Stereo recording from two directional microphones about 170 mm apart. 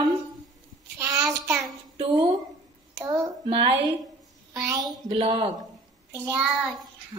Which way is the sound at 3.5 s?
35° right (ahead or behind).